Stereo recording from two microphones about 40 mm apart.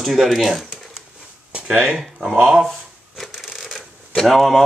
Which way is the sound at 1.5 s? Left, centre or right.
Right.